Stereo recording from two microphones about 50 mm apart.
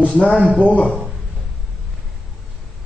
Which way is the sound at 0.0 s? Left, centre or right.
Left.